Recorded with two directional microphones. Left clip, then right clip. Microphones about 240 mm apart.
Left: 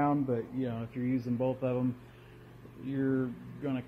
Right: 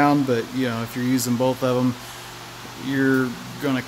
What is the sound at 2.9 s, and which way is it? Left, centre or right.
Speech, centre.